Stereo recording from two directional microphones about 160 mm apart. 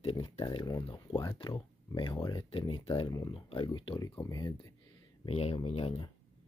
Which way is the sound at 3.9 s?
20° left (ahead or behind).